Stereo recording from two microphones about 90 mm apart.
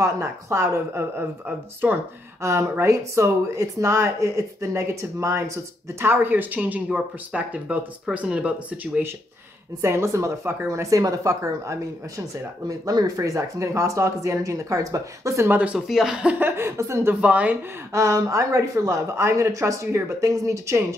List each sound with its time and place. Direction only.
0.0 s speech: 35° right (ahead or behind)
2.4 s speech: 30° right (ahead or behind); by 9.0 s 15° right (ahead or behind)
9.8 s speech: 30° right (ahead or behind)
15.5 s speech: 15° right (ahead or behind)
15.9 s speech: 5° right (ahead or behind)
16.3 s a woman's voice: 25° right (ahead or behind)
17.1 s speech: 15° right (ahead or behind)
17.9 s speech: 35° right (ahead or behind)